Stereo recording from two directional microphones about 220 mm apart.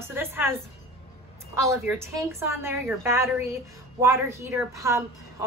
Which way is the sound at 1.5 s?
10° right (ahead or behind).